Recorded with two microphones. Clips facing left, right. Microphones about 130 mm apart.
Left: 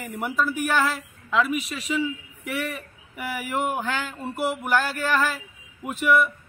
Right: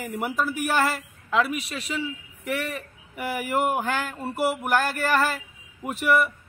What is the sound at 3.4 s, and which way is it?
Speech, centre (ahead or behind).